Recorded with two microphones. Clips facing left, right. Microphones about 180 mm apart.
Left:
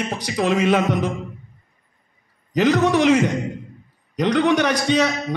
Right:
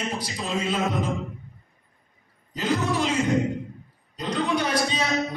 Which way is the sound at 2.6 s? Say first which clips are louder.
Left 8 dB; 70° left (ahead or behind).